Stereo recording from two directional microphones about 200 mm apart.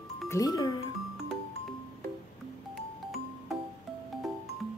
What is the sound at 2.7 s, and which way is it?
Music, centre (ahead or behind).